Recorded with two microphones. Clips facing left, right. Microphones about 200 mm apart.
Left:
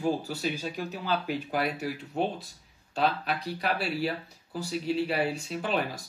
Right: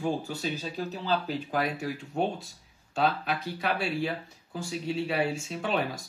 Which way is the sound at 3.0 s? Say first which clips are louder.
Even; centre (ahead or behind).